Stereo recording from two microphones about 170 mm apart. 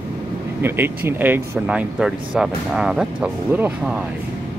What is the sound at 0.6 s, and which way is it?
Speech, 10° right (ahead or behind).